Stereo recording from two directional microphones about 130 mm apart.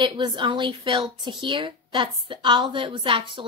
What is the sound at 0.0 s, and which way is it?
A woman's voice, 35° right (ahead or behind).